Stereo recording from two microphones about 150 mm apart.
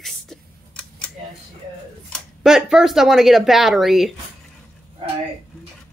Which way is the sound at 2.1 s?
Centre (ahead or behind).